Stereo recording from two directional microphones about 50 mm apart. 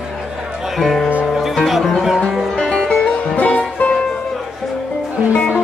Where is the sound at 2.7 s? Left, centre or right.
Centre.